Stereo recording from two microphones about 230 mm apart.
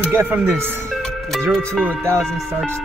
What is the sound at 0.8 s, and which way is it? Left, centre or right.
Music, centre.